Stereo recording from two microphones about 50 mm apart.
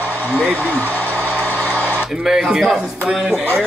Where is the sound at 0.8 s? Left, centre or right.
Left.